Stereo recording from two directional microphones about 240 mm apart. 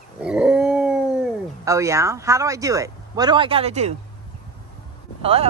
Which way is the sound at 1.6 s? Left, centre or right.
Centre.